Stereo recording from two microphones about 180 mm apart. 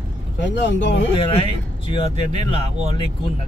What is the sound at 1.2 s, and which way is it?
Speech, 30° left (ahead or behind).